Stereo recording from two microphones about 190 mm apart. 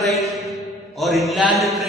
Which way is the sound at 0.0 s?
Centre (ahead or behind).